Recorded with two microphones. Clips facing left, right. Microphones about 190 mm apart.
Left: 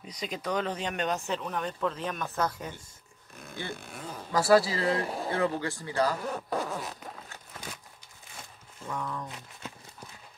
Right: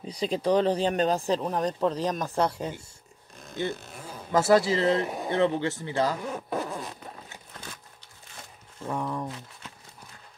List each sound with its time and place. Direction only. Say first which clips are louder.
0.0 s speech: right 8 dB; 30° right (ahead or behind)
3.9 s a sound: left 1 dB; 10° right (ahead or behind)
4.3 s speech: right 2 dB; 25° right (ahead or behind)
6.2 s speech: right 1 dB; 5° right (ahead or behind)
8.8 s speech: right 5 dB; 25° right (ahead or behind)